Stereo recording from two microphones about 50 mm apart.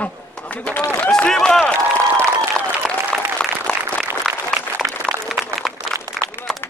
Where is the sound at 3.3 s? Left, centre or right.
Left.